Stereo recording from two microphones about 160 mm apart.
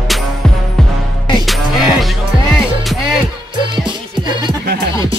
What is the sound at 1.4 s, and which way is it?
Music, centre (ahead or behind).